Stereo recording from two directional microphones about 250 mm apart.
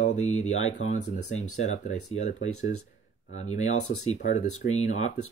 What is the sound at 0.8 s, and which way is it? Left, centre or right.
Speech, left.